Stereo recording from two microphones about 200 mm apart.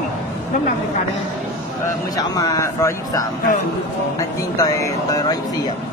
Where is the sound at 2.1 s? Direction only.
15° left (ahead or behind).